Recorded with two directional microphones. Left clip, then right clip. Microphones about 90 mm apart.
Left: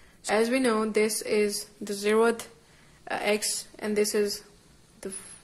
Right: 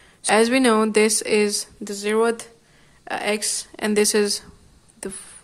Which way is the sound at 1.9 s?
15° right (ahead or behind).